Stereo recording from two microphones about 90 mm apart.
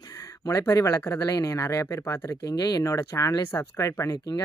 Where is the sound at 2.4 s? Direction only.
45° left (ahead or behind).